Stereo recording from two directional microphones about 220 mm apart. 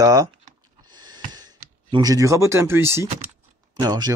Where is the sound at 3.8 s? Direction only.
15° right (ahead or behind).